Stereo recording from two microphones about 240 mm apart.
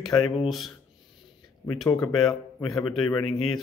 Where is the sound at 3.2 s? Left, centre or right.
Left.